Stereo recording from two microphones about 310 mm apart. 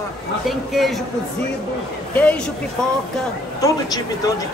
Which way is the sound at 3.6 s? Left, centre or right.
Centre.